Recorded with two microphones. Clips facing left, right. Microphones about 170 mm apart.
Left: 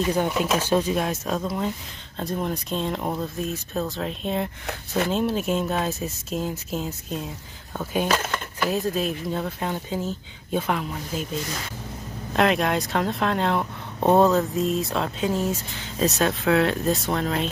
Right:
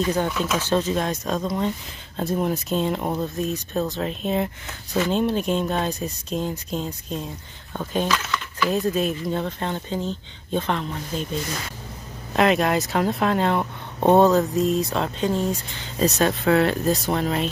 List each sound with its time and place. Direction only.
0.0 s speech: 10° left (ahead or behind)
4.6 s speech: 55° left (ahead or behind)
5.1 s speech: 5° left (ahead or behind)
8.1 s a sound: 50° left (ahead or behind)
8.6 s speech: centre (ahead or behind)
12.4 s speech: centre (ahead or behind)